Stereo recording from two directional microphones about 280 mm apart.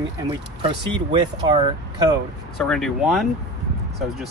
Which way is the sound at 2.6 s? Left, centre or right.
Centre.